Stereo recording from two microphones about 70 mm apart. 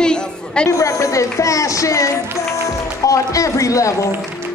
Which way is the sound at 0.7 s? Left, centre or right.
Left.